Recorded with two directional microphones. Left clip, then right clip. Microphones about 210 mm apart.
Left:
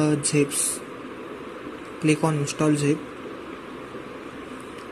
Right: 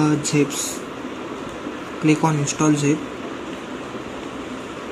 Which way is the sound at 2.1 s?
10° left (ahead or behind).